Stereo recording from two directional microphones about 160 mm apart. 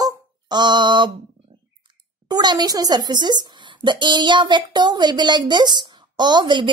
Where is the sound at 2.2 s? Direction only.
25° right (ahead or behind).